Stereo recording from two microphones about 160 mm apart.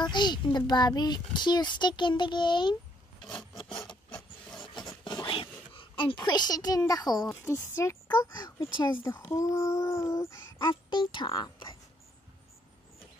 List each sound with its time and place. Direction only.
0.0 s a child's voice: 30° left (ahead or behind)
3.7 s filing: 30° left (ahead or behind)
4.1 s rub: 5° left (ahead or behind)
5.0 s a child's voice: 30° left (ahead or behind)